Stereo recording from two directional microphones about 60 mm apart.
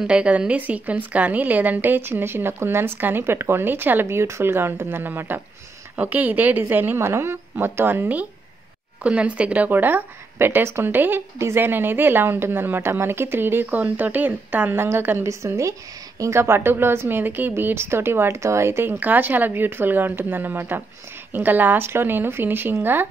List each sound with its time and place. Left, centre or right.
0.0 s a woman's voice: centre
7.0 s a woman's voice: right
11.3 s speech: right
11.6 s a woman's voice: right
14.7 s a woman's voice: right
15.2 s speech: right
16.3 s a woman's voice: right
18.9 s a woman's voice: right